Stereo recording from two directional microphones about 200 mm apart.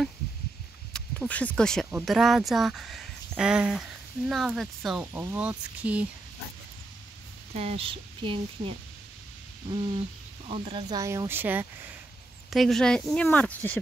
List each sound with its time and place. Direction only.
0.9 s speech: 5° left (ahead or behind)
7.5 s speech: 30° right (ahead or behind)
10.5 s speech: 25° right (ahead or behind)
12.4 s speech: centre (ahead or behind)